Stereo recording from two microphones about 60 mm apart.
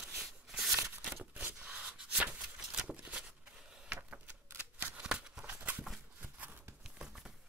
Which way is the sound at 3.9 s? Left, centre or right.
Right.